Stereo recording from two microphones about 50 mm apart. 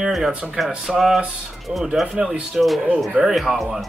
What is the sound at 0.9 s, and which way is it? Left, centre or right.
Speech, centre.